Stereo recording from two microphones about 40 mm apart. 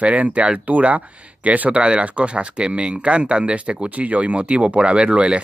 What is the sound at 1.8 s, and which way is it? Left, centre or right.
Speech, right.